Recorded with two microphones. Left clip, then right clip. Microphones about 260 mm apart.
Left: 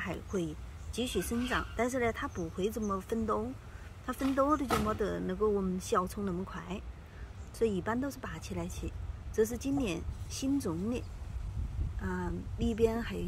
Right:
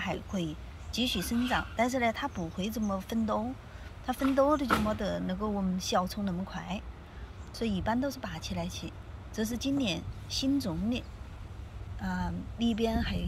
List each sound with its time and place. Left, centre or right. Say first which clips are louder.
0.0 s speech: right 1 dB; centre